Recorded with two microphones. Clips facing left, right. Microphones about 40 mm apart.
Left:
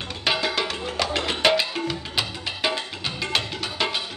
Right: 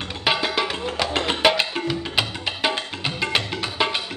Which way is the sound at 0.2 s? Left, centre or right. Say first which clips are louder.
Right 2 dB; centre.